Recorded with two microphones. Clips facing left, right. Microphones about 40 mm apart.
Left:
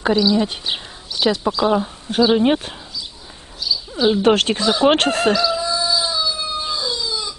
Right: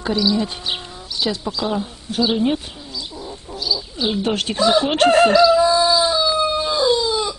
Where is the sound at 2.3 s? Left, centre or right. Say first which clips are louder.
Left 3 dB; left.